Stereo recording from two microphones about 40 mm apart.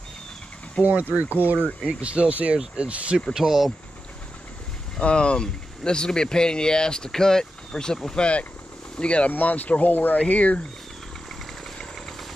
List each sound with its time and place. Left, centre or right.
0.8 s speech: right
1.9 s speech: right
3.3 s speech: centre
4.9 s speech: left
8.9 s speech: left
9.3 s speech: left
11.8 s vehicle: centre